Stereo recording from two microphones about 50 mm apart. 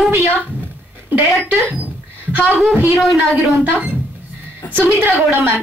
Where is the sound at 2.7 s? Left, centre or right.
Right.